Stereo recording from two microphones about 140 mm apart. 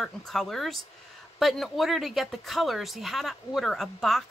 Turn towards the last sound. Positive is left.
turn(degrees=0)  # may be behind; listen again after turning